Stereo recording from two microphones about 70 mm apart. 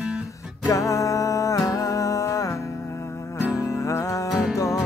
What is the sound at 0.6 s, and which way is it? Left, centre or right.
Music, left.